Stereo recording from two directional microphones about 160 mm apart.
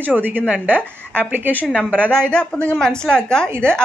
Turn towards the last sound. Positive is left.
turn(degrees=5)  # may be behind; listen again after turning